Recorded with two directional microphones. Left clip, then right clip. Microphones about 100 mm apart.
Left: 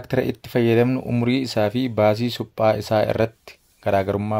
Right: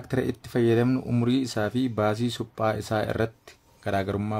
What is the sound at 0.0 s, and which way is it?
Speech, 30° left (ahead or behind).